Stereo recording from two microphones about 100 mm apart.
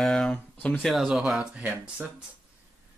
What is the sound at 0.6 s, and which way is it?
Speech, 15° left (ahead or behind).